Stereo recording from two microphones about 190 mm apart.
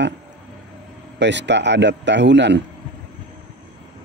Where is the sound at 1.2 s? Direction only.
70° right (ahead or behind).